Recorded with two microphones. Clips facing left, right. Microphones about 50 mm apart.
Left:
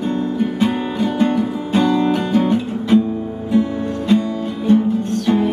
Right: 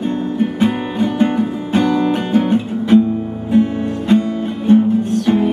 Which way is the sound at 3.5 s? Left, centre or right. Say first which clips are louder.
Right 3 dB; right.